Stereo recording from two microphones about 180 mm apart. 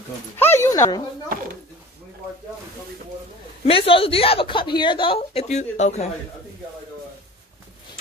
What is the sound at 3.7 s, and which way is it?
A woman's voice, 30° left (ahead or behind).